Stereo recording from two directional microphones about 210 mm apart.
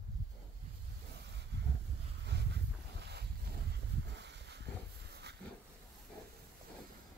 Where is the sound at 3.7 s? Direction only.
55° right (ahead or behind).